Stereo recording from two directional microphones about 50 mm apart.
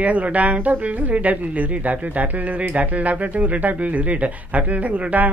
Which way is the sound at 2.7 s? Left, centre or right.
Right.